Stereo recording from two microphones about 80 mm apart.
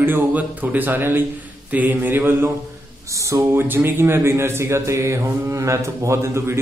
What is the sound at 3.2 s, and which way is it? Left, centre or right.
Speech, right.